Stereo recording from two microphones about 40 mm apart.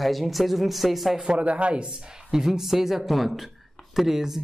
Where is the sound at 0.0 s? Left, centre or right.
Centre.